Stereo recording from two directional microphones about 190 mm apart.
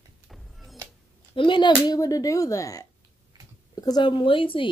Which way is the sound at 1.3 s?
25° left (ahead or behind).